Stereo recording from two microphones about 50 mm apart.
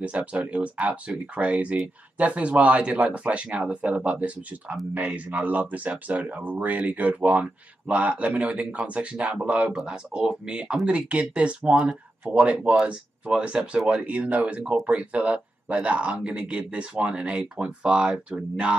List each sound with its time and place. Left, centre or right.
0.0 s speech: right